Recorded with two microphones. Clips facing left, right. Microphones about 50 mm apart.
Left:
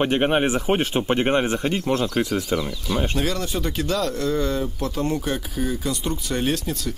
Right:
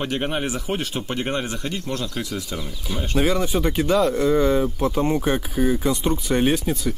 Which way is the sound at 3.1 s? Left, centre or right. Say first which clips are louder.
Right 4 dB; centre.